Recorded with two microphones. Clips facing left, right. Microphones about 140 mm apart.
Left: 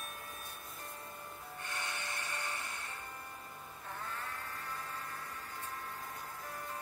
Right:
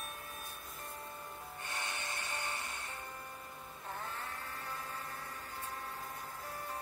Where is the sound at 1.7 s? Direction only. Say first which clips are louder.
Even; 25° right (ahead or behind).